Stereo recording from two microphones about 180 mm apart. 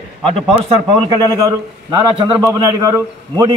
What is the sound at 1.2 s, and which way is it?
A man's voice, 20° right (ahead or behind).